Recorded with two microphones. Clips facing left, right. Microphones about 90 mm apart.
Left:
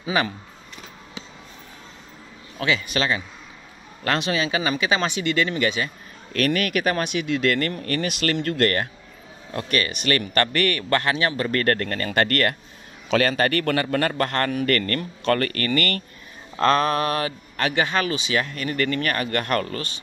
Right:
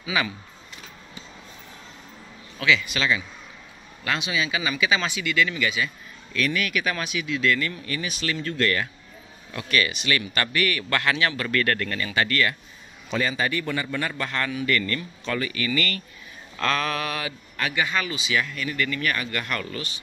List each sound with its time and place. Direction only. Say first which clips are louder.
0.0 s speech: left 3 dB; 40° left (ahead or behind)
2.6 s a man's voice: even; 45° left (ahead or behind)
13.1 s a man's voice: left 5 dB; 65° left (ahead or behind)
16.5 s a man's voice: left 6 dB; 40° left (ahead or behind)